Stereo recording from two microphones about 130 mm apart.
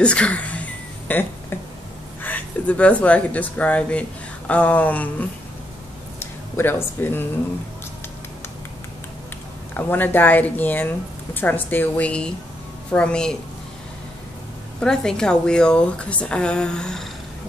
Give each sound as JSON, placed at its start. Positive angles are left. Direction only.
{"t": 0.0, "sound": "a sound", "side_deg": 10}
{"t": 2.2, "sound": "speech", "side_deg": 10}
{"t": 6.5, "sound": "speech", "side_deg": 15}
{"t": 9.8, "sound": "speech", "side_deg": 15}
{"t": 14.8, "sound": "speech", "side_deg": 5}